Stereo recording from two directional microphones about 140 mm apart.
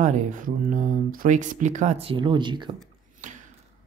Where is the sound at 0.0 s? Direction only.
65° right (ahead or behind); by 2.7 s 35° right (ahead or behind).